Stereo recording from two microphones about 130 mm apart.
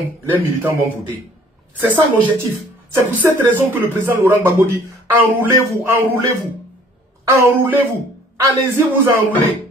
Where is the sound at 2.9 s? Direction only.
15° right (ahead or behind).